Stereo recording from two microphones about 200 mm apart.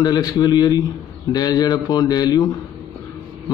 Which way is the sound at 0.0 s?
20° left (ahead or behind).